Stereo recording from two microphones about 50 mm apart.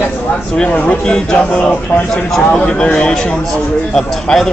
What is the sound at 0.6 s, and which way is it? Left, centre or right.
Speech, left.